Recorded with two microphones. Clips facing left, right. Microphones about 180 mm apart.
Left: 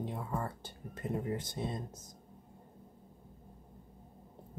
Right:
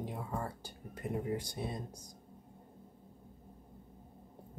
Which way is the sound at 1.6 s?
10° right (ahead or behind).